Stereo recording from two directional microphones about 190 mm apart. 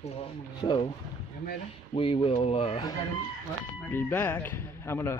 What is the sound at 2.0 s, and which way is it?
Speech, 30° left (ahead or behind).